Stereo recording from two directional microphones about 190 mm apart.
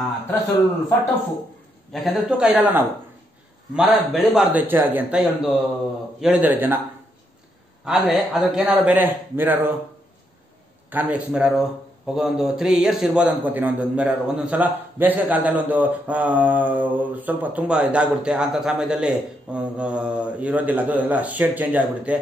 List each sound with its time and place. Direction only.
1.9 s a man's voice: centre (ahead or behind)
7.8 s a man's voice: centre (ahead or behind)
10.9 s a man's voice: 10° right (ahead or behind)